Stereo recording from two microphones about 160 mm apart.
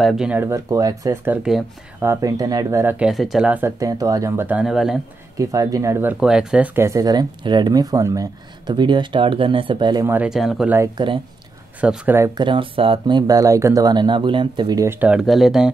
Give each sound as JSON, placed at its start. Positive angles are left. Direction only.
{"t": 0.0, "sound": "speech", "side_deg": -5}
{"t": 2.0, "sound": "speech", "side_deg": -20}
{"t": 3.1, "sound": "speech", "side_deg": 0}
{"t": 5.4, "sound": "speech", "side_deg": -20}
{"t": 6.1, "sound": "speech", "side_deg": -5}
{"t": 10.0, "sound": "speech", "side_deg": -10}
{"t": 11.0, "sound": "speech", "side_deg": -30}
{"t": 11.8, "sound": "speech", "side_deg": -5}
{"t": 12.4, "sound": "speech", "side_deg": -30}
{"t": 15.0, "sound": "speech", "side_deg": -5}